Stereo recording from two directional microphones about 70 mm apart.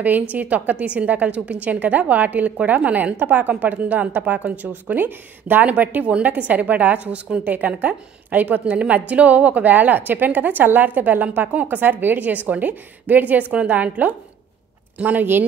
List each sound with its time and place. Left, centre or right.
0.0 s a woman's voice: right